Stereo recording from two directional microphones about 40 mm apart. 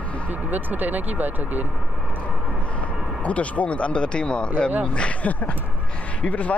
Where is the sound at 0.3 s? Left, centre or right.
Right.